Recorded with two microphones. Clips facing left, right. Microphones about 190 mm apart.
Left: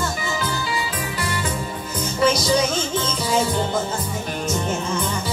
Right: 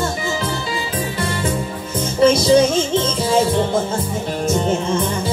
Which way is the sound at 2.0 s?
25° right (ahead or behind).